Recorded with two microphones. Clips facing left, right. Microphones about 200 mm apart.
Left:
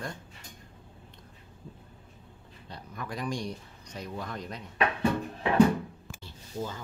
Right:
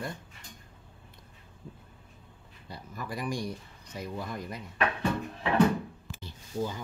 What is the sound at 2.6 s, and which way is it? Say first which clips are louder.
Speech: even; 10° right (ahead or behind).